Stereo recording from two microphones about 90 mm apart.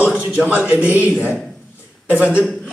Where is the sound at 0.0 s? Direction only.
15° right (ahead or behind).